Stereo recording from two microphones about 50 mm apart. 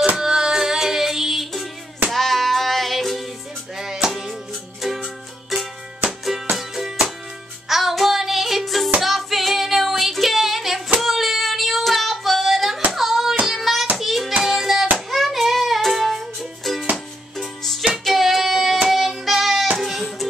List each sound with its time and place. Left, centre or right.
0.1 s music: centre
5.5 s music: centre
9.0 s female singing: centre
12.9 s hands: centre
13.5 s child singing: centre
14.4 s music: centre
15.0 s child singing: centre
16.9 s music: centre